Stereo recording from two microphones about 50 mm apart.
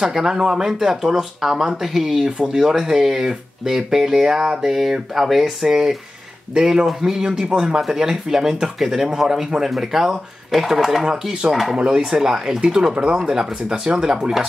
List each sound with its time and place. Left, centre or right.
0.0 s speech: centre
11.7 s speech: centre